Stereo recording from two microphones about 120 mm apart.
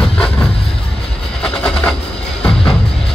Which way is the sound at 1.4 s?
5° left (ahead or behind).